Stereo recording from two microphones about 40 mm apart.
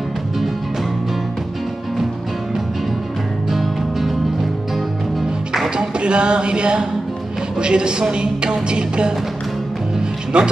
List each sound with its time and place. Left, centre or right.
3.4 s music: centre
5.8 s speech: right
9.9 s music: right